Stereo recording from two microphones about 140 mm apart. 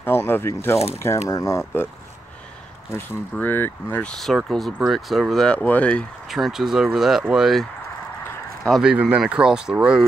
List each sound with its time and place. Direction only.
0.0 s speech: 15° left (ahead or behind)
2.9 s speech: 15° left (ahead or behind)
4.1 s speech: centre (ahead or behind)
6.2 s speech: centre (ahead or behind)
8.6 s speech: centre (ahead or behind)